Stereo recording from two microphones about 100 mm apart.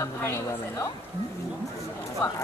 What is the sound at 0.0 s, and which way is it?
Speech, 30° left (ahead or behind).